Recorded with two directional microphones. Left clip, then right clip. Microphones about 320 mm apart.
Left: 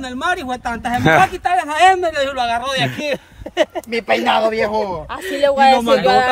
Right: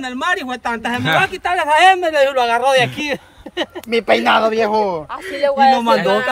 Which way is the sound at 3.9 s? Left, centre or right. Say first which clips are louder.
Right 5 dB; centre.